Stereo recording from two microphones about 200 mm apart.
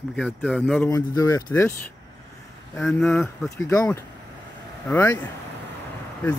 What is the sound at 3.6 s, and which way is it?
Speech, 15° left (ahead or behind).